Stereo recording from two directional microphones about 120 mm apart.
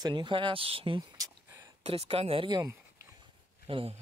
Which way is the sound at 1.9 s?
55° right (ahead or behind).